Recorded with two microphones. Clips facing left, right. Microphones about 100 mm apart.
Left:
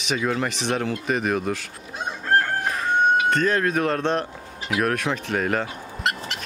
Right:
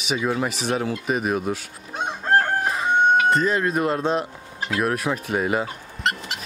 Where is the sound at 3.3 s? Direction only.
5° right (ahead or behind).